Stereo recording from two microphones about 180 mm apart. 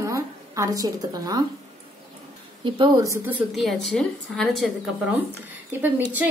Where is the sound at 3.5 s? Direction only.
Centre (ahead or behind).